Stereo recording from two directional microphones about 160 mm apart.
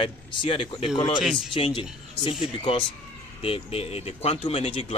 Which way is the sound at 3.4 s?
40° left (ahead or behind).